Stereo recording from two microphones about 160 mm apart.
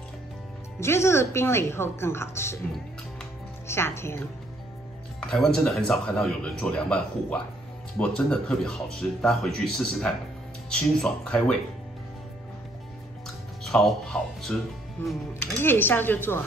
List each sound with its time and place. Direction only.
0.7 s speech: 15° left (ahead or behind)
3.6 s speech: 15° left (ahead or behind)
5.3 s speech: centre (ahead or behind)
13.7 s speech: centre (ahead or behind)
15.0 s speech: 15° left (ahead or behind)